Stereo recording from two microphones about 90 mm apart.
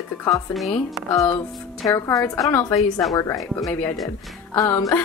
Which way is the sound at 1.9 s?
35° left (ahead or behind).